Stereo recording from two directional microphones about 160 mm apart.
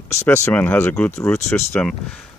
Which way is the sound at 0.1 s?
20° left (ahead or behind).